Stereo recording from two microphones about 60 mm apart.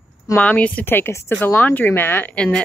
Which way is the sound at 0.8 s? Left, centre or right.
Left.